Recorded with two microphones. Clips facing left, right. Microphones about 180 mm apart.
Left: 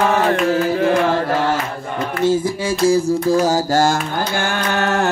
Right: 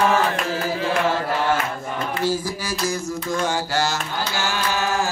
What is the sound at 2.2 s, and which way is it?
Music, 25° left (ahead or behind).